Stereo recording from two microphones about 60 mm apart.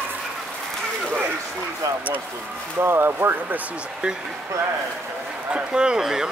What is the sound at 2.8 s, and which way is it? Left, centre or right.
Speech, right.